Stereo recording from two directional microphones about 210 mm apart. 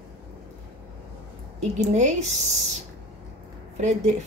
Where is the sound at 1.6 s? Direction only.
35° right (ahead or behind).